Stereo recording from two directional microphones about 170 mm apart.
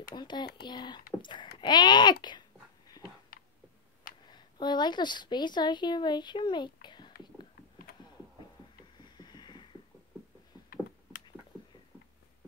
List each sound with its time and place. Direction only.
0.1 s speech: 25° left (ahead or behind)
4.3 s a woman's voice: 25° left (ahead or behind)
8.9 s a sound: 25° left (ahead or behind)